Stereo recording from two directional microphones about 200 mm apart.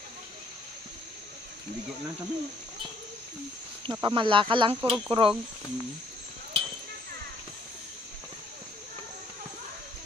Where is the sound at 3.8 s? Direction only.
25° right (ahead or behind).